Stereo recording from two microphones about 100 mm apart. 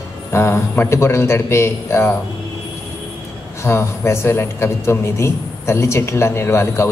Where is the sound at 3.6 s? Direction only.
25° left (ahead or behind).